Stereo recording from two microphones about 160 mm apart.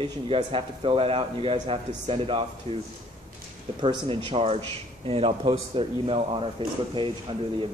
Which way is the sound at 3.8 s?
30° right (ahead or behind).